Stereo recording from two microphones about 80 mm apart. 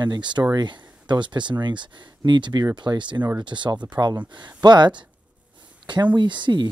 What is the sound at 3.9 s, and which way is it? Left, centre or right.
Speech, right.